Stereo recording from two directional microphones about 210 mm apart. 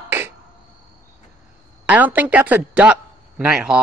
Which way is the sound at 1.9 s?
10° right (ahead or behind).